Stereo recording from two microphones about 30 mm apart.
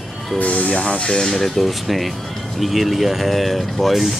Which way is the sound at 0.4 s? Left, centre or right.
Left.